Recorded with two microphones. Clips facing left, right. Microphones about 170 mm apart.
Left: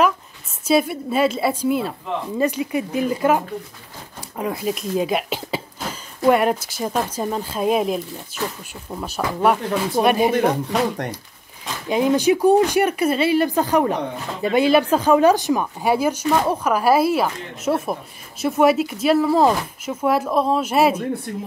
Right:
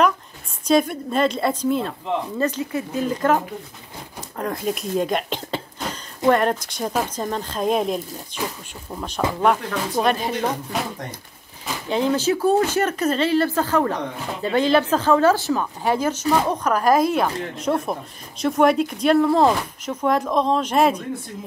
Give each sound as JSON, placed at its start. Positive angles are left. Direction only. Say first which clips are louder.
{"t": 0.7, "sound": "speech", "louder": "even", "side_deg": 5}
{"t": 8.4, "sound": "speech", "louder": "left 1 dB", "side_deg": -15}
{"t": 8.9, "sound": "speech", "louder": "right 1 dB", "side_deg": 10}
{"t": 10.3, "sound": "speech", "louder": "left 5 dB", "side_deg": 65}
{"t": 11.9, "sound": "speech", "louder": "left 3 dB", "side_deg": 15}